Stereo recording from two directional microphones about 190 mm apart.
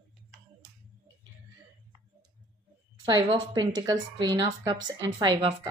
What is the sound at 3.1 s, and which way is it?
A woman's voice, 25° right (ahead or behind).